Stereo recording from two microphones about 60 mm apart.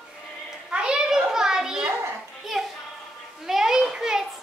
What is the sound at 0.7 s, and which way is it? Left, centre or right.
Children playing, centre.